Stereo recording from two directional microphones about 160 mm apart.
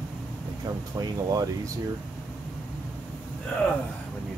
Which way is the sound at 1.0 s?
20° right (ahead or behind).